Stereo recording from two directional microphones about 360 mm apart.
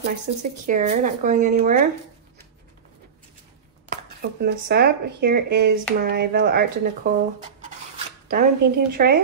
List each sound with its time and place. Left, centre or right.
0.4 s speech: right
3.9 s speech: right
8.3 s speech: right